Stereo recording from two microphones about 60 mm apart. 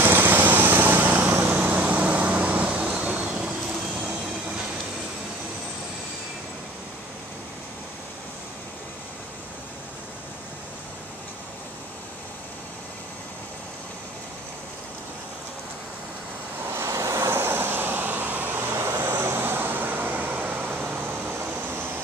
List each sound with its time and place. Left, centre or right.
0.0 s vehicle: right; by 3.5 s centre
16.7 s vehicle: right
17.4 s vehicle: right
18.7 s vehicle: right
19.2 s vehicle: right